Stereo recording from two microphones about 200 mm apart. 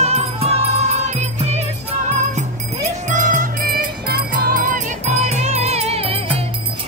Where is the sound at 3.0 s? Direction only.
40° right (ahead or behind).